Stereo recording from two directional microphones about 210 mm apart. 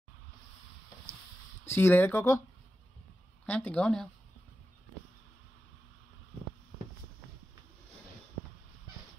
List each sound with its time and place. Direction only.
1.7 s speech: 10° left (ahead or behind)
3.4 s speech: 5° left (ahead or behind)